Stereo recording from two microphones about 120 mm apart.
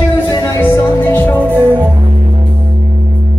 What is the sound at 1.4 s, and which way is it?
Music, 15° right (ahead or behind).